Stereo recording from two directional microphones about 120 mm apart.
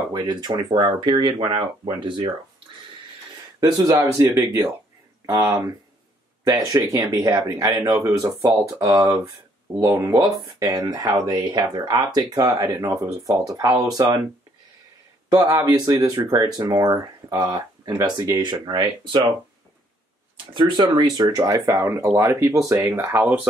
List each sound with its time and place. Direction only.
0.1 s speech: 35° right (ahead or behind)
3.6 s speech: 30° right (ahead or behind)
15.3 s speech: 30° right (ahead or behind)
20.5 s speech: 40° right (ahead or behind)
23.1 s speech: 5° right (ahead or behind)